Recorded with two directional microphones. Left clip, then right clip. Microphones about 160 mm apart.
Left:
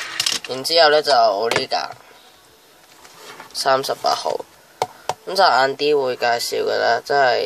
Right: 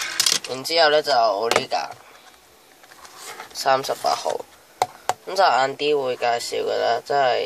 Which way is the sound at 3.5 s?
20° left (ahead or behind).